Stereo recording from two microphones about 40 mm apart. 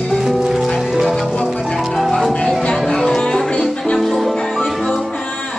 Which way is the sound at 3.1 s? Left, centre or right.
Left.